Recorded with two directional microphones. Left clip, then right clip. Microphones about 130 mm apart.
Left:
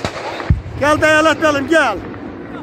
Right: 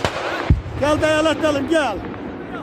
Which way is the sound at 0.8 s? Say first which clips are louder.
Left 5 dB; 10° right (ahead or behind).